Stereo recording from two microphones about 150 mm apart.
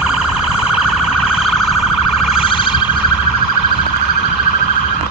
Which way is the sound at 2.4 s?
35° left (ahead or behind).